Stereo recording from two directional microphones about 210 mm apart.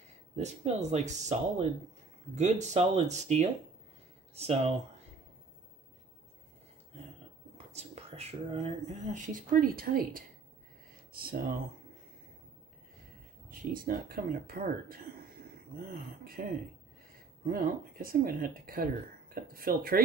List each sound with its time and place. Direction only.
0.4 s speech: 30° right (ahead or behind)
7.5 s speech: 30° right (ahead or behind)
11.1 s speech: 45° right (ahead or behind)
13.5 s speech: 45° right (ahead or behind)